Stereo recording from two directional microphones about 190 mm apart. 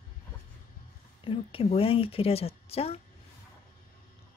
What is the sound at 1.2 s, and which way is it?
A woman's voice, 30° left (ahead or behind).